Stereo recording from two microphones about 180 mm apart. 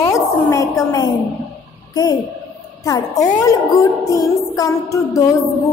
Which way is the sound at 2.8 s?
20° left (ahead or behind).